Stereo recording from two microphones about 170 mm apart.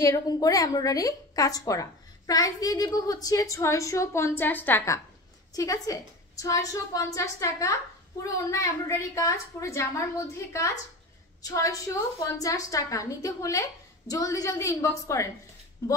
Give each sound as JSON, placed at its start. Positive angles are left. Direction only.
{"t": 0.0, "sound": "a woman's voice", "side_deg": 20}